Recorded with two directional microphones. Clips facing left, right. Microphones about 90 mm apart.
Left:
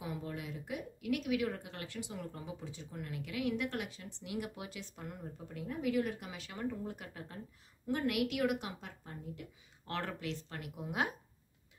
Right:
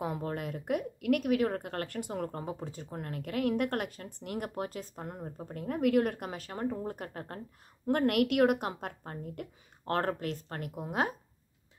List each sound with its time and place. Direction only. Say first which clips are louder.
0.0 s speech: right 7 dB; 50° right (ahead or behind)